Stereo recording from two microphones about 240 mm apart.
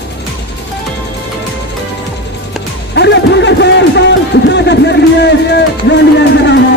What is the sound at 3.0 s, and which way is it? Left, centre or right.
Speech, left.